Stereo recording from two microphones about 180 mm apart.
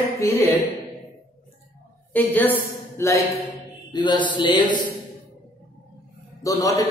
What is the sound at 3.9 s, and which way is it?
Speech, 25° left (ahead or behind).